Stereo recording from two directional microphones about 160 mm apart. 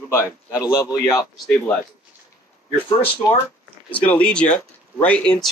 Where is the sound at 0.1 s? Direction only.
20° left (ahead or behind).